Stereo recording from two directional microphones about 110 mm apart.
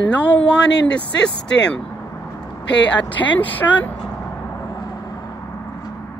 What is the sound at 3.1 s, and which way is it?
Speech, 15° left (ahead or behind).